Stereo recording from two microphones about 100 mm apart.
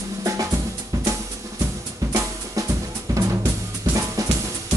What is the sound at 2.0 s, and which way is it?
Drum, 30° right (ahead or behind).